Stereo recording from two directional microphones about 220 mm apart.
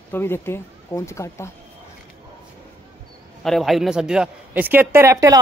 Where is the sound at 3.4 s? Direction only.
Centre (ahead or behind).